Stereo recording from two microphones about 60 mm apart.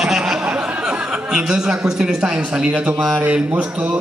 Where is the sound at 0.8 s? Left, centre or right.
Centre.